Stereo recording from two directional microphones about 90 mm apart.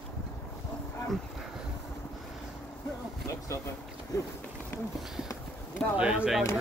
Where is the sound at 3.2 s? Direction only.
35° left (ahead or behind).